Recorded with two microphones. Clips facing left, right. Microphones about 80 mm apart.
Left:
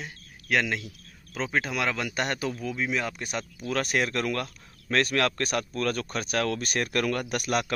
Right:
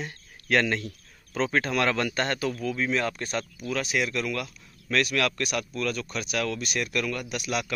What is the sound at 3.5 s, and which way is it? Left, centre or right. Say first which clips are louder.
Speech: left 3 dB; left.